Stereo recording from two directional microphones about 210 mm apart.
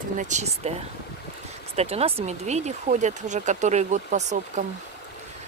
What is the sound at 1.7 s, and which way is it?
Speech, 30° right (ahead or behind).